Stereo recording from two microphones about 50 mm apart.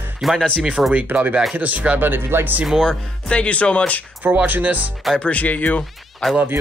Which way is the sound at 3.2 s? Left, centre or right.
Left.